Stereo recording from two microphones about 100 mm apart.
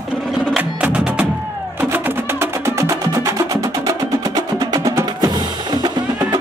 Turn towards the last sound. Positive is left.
turn(degrees=-40)  # may be behind; listen again after turning